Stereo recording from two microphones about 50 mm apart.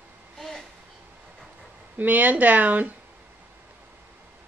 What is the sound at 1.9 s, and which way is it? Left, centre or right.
Speech, right.